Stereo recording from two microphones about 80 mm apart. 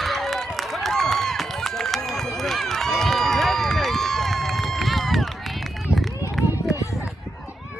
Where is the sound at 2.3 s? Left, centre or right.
Centre.